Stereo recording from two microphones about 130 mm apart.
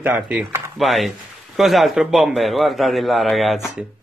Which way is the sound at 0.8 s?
Centre (ahead or behind).